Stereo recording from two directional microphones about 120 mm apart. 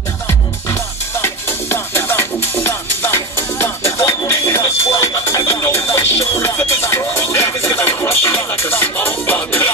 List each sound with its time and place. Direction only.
1.2 s music: 20° left (ahead or behind)